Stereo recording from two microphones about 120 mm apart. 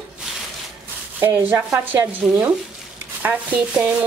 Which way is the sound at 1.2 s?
15° right (ahead or behind).